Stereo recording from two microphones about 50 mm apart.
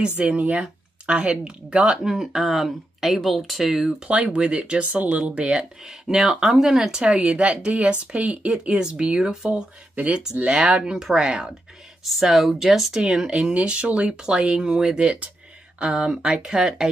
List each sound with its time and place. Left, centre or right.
0.4 s speech: right
2.0 s speech: centre
4.1 s speech: right; by 9.7 s centre
9.9 s speech: right
10.9 s speech: centre
12.0 s speech: centre